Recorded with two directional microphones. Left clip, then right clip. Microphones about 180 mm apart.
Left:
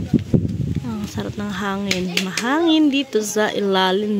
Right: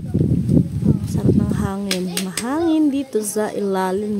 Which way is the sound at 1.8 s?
Centre (ahead or behind).